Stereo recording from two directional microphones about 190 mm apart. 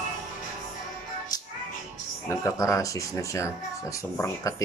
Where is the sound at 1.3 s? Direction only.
20° left (ahead or behind).